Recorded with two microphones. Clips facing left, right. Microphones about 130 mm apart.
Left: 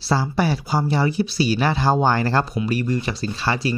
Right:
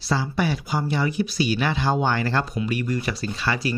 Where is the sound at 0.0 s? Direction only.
35° left (ahead or behind).